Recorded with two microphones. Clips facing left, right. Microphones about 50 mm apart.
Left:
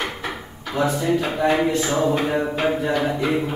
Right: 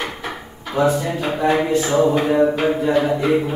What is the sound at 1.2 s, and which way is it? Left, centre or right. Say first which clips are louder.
Speech: right 1 dB; centre.